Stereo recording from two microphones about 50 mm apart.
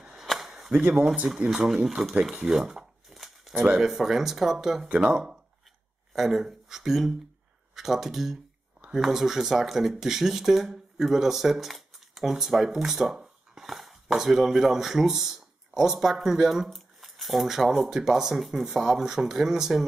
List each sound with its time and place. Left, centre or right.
0.2 s a sound: centre
1.1 s speech: centre
3.1 s a sound: centre
3.8 s speech: centre
4.8 s speech: right
6.1 s speech: centre